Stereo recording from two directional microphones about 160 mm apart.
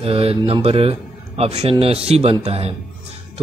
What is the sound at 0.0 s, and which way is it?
Speech, 40° right (ahead or behind).